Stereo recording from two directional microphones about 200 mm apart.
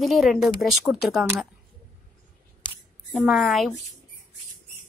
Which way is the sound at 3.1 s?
Centre (ahead or behind).